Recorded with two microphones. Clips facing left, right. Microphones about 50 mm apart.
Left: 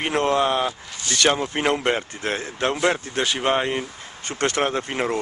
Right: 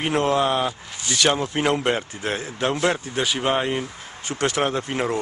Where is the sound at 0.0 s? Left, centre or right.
Centre.